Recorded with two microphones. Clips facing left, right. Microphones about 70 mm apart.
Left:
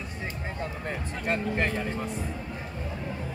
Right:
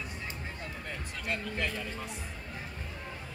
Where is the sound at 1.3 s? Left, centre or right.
Left.